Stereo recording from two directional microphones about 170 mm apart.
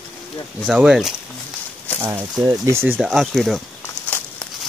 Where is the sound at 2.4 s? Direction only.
15° right (ahead or behind).